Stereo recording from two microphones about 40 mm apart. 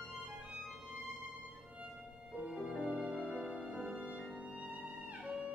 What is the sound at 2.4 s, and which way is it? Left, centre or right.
Music, centre.